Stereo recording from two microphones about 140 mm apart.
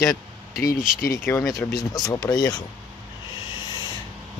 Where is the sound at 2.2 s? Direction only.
30° left (ahead or behind).